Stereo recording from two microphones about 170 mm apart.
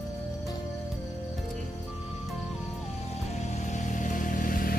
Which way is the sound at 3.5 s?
45° left (ahead or behind).